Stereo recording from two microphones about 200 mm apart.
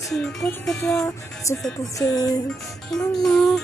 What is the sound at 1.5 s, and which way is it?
Speech, 15° left (ahead or behind).